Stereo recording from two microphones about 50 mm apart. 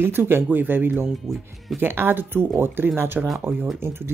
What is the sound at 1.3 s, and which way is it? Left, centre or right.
Speech, centre.